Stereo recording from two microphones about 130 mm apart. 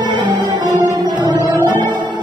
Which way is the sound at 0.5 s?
35° right (ahead or behind).